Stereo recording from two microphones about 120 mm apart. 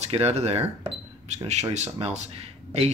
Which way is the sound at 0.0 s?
60° right (ahead or behind).